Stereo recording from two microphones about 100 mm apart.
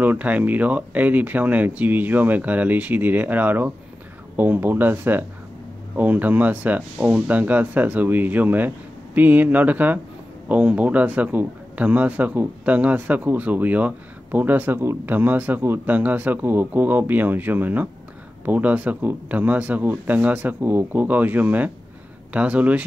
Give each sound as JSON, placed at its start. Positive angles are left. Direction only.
{"t": 0.0, "sound": "a man's voice", "side_deg": -15}